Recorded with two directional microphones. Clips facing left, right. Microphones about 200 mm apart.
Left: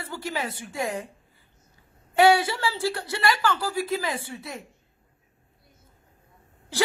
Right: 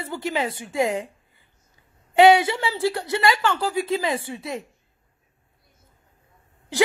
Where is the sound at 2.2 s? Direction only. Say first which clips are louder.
Right 4 dB; 20° right (ahead or behind).